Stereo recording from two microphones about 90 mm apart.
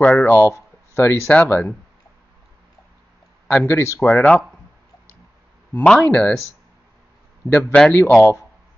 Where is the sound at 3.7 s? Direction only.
30° left (ahead or behind).